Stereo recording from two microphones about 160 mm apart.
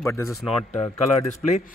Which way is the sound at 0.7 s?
20° left (ahead or behind).